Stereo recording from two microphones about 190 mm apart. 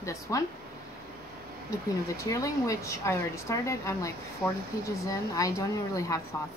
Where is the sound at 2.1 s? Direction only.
15° left (ahead or behind).